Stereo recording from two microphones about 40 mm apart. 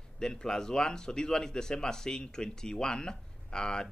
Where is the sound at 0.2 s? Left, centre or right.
Centre.